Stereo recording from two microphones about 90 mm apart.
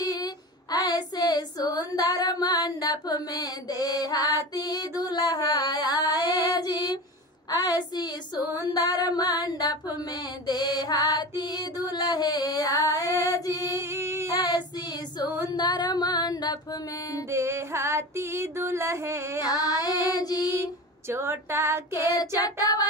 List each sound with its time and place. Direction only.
0.0 s child singing: 45° left (ahead or behind)
6.2 s female singing: 50° left (ahead or behind)
10.4 s music: 50° left (ahead or behind)
13.7 s singing: 30° right (ahead or behind)
15.4 s a sound: 50° left (ahead or behind)
17.3 s music: 30° right (ahead or behind)
19.4 s child singing: 45° left (ahead or behind)
21.1 s a sound: 30° right (ahead or behind)
22.1 s child singing: 45° left (ahead or behind)